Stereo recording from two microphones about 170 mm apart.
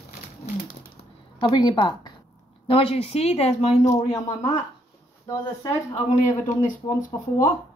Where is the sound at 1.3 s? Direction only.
30° left (ahead or behind).